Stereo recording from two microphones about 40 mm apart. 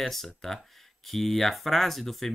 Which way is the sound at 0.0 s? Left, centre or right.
Centre.